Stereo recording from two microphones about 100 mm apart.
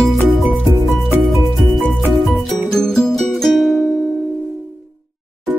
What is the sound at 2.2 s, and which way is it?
Music, 5° left (ahead or behind).